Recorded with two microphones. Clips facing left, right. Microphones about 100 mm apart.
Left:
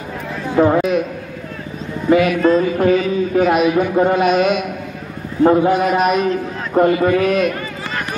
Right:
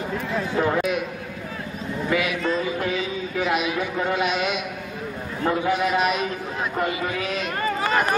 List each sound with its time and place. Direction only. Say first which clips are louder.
0.6 s a man's voice: left 10 dB; 30° left (ahead or behind)
2.0 s a man's voice: left 11 dB; 45° left (ahead or behind)